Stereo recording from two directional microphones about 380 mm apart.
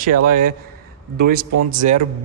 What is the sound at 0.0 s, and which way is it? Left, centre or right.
Speech, right.